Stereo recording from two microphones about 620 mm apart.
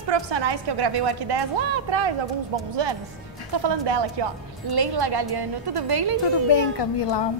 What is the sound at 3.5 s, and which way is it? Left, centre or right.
A woman's voice, right.